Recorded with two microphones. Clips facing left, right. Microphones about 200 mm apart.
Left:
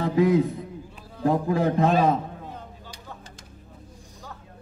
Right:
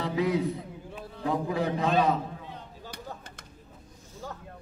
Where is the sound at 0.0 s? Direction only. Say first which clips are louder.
Left 6 dB; 50° left (ahead or behind).